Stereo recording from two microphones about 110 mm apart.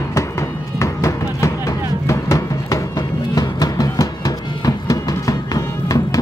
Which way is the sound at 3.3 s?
35° left (ahead or behind).